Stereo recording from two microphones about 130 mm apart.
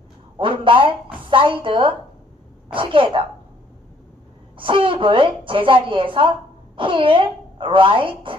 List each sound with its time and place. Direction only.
0.4 s a woman's voice: 40° right (ahead or behind)
4.6 s a woman's voice: 40° right (ahead or behind)